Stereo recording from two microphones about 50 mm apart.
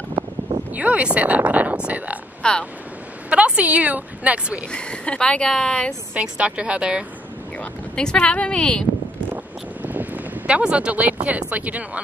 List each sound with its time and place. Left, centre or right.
0.7 s speech: right
2.4 s speech: centre
3.3 s a woman's voice: right
4.6 s speech: centre
6.1 s speech: right
7.5 s speech: centre
9.3 s a sound: right
10.5 s speech: centre